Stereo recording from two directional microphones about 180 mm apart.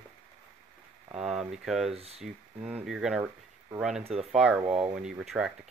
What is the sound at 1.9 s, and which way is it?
Speech, 35° right (ahead or behind).